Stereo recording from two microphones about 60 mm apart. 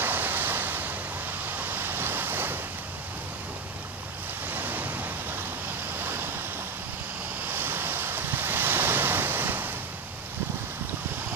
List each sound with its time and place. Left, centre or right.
0.0 s waves: right
4.5 s waves: right
7.4 s waves: right